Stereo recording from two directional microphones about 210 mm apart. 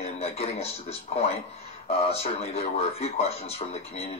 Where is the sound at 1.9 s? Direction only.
30° left (ahead or behind).